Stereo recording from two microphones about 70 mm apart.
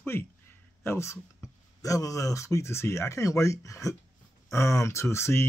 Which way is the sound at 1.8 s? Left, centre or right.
Left.